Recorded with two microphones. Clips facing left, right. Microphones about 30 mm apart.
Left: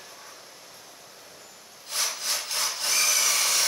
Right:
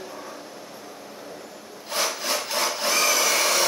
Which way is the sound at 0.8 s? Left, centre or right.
Right.